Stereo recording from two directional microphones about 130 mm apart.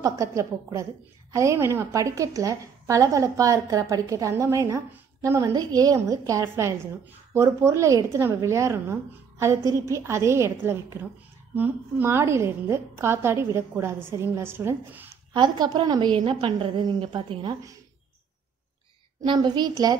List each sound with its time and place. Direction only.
0.0 s a woman's voice: 25° right (ahead or behind)
15.3 s a woman's voice: 35° right (ahead or behind)
19.2 s a woman's voice: 35° right (ahead or behind)